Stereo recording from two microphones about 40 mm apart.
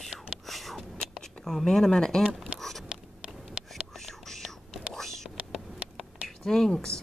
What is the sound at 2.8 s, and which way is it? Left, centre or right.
Writing, right.